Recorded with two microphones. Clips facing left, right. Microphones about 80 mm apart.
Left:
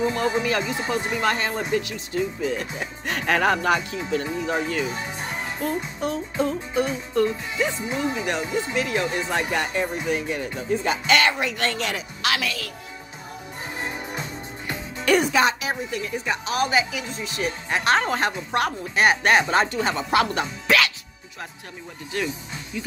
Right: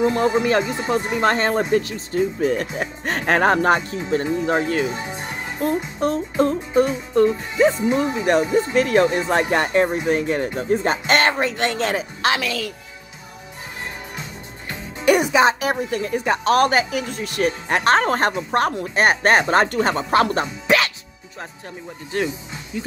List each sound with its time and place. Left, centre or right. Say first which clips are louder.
0.0 s speech: right 5 dB; right
15.0 s speech: right 4 dB; centre
15.6 s speech: right 6 dB; right
20.6 s music: right 2 dB; right
22.1 s speech: right 4 dB; right